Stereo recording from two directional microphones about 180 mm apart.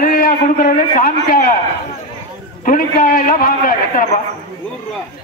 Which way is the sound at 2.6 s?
50° left (ahead or behind).